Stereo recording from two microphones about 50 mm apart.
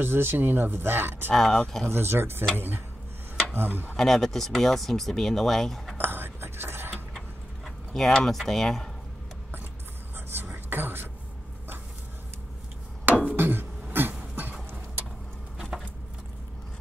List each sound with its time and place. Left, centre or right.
0.0 s speech: right
1.3 s speech: centre
1.9 s speech: right
3.9 s speech: centre
5.9 s a sound: right
7.2 s keys jangling: centre
8.4 s speech: centre
10.1 s a sound: right
13.2 s a sound: right